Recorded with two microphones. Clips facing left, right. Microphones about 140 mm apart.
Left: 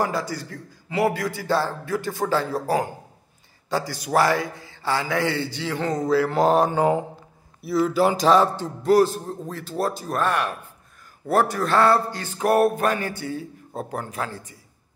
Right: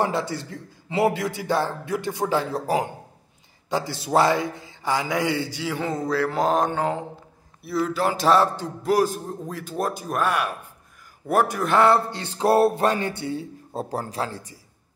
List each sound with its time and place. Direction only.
0.0 s a man's voice: 25° right (ahead or behind)